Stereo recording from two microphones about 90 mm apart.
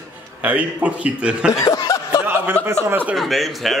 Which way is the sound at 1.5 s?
35° left (ahead or behind).